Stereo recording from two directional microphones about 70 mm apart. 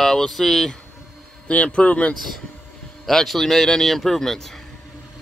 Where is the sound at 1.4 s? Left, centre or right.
Centre.